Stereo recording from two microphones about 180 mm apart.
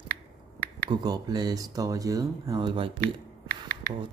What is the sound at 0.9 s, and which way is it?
Speech, 20° right (ahead or behind).